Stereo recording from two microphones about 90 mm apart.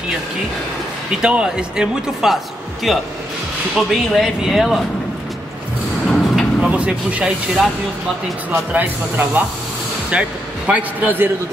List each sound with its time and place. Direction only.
1.1 s speech: 10° right (ahead or behind)
6.0 s a sound: centre (ahead or behind)
6.7 s speech: 15° right (ahead or behind)